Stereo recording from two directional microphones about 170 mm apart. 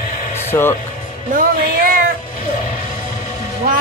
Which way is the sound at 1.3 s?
55° right (ahead or behind).